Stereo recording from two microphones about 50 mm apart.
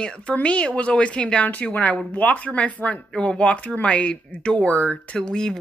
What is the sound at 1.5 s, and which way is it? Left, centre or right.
A woman's voice, left.